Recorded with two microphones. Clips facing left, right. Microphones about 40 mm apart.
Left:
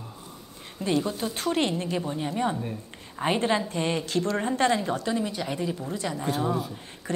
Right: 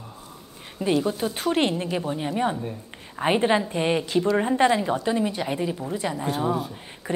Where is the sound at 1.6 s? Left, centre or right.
Centre.